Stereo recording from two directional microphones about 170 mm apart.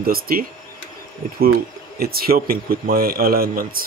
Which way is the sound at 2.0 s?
60° right (ahead or behind).